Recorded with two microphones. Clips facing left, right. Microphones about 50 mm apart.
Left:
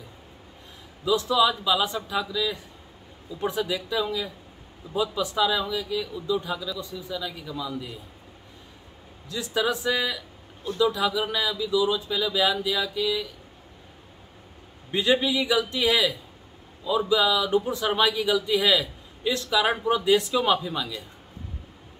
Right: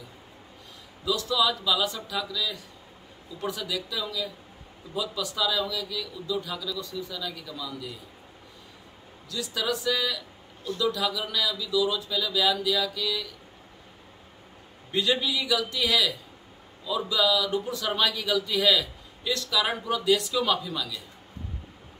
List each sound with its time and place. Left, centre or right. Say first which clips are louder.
1.0 s a man's voice: left 4 dB; left
9.3 s a man's voice: left 4 dB; left
14.9 s a man's voice: left 3 dB; left